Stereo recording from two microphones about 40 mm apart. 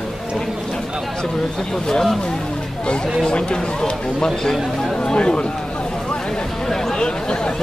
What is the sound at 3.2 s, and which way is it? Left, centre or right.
Speech, left.